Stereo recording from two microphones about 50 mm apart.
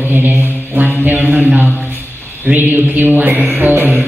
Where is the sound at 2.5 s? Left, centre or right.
Right.